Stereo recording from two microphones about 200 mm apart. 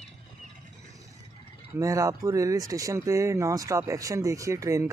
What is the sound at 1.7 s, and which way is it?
Speech, 15° right (ahead or behind).